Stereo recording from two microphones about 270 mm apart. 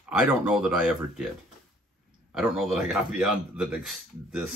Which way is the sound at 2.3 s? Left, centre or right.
Centre.